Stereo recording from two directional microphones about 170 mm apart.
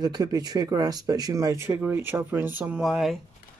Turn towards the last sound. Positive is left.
turn(degrees=0)  # may be behind; listen again after turning